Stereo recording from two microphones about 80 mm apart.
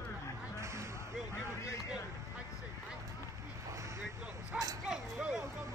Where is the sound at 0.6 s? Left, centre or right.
Right.